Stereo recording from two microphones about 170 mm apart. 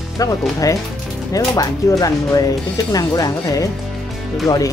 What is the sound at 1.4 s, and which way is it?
Speech, 20° left (ahead or behind).